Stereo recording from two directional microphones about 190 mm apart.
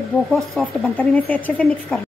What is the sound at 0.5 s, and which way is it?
Speech, 5° left (ahead or behind).